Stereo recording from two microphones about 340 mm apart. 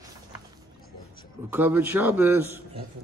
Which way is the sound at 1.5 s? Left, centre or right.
Centre.